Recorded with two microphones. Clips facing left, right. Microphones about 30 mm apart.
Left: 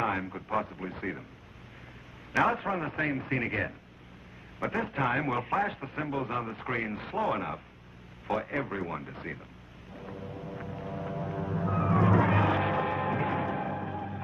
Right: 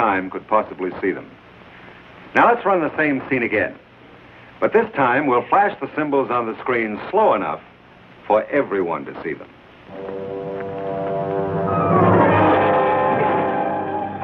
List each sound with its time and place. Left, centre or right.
0.0 s a man's voice: right
2.4 s a man's voice: right
4.8 s a man's voice: right
8.3 s a sound: right